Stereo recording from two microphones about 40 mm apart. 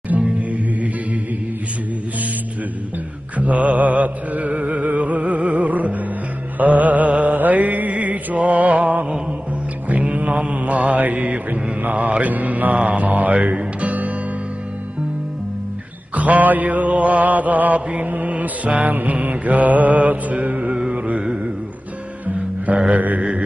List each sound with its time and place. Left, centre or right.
0.2 s music: right
3.3 s mantra: right
16.2 s mantra: right
22.9 s mantra: right